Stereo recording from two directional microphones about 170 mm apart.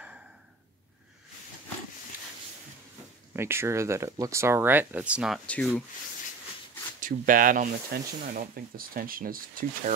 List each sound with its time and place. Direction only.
2.1 s a sound: 10° right (ahead or behind)
3.3 s speech: 15° right (ahead or behind)
5.5 s sanding: 5° left (ahead or behind)
7.0 s speech: 55° right (ahead or behind)